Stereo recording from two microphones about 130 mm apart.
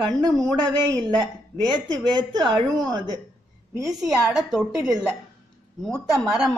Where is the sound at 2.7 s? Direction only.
30° right (ahead or behind).